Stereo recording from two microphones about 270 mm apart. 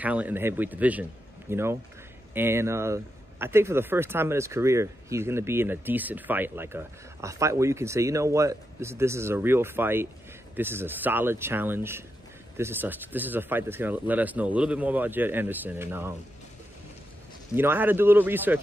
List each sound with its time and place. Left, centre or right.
0.0 s speech: centre
17.6 s speech: centre